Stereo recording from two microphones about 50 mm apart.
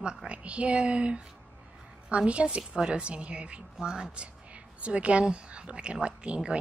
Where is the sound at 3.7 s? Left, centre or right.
Centre.